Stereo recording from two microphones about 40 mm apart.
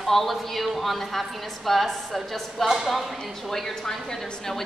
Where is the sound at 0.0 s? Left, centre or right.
Centre.